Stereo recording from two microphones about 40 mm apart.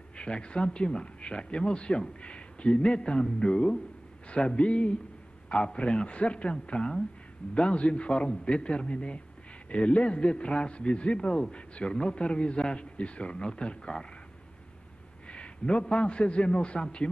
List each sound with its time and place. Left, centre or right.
0.1 s speech: left
15.2 s a man's voice: left